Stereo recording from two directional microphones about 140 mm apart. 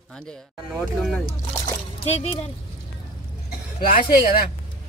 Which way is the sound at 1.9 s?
50° left (ahead or behind).